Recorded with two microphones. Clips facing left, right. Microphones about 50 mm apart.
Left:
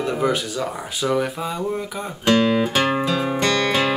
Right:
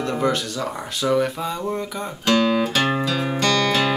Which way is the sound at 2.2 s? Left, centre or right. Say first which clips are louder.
Left 1 dB; left.